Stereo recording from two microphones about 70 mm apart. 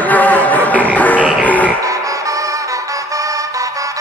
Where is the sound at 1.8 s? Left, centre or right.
Right.